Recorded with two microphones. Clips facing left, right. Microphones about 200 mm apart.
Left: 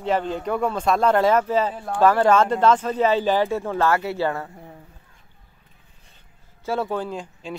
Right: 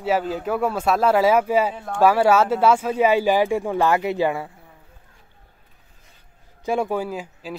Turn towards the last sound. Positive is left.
turn(degrees=-5)  # may be behind; listen again after turning